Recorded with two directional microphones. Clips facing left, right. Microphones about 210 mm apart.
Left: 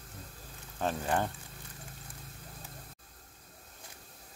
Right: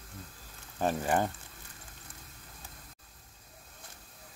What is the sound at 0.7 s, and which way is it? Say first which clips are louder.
Speech: right 3 dB; 10° right (ahead or behind).